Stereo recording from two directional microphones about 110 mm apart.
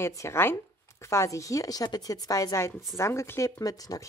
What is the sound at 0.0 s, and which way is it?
Speech, 25° left (ahead or behind).